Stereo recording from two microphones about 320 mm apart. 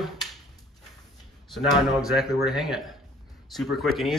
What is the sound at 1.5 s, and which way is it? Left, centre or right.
Speech, centre.